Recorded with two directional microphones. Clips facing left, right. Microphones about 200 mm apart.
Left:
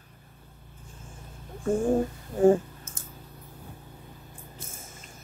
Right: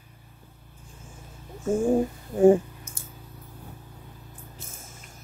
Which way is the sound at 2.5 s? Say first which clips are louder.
Right 2 dB; 15° right (ahead or behind).